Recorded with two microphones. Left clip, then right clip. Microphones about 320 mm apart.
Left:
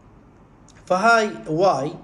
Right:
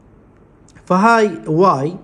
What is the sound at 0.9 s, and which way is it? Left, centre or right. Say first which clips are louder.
A man's voice: right 4 dB; centre.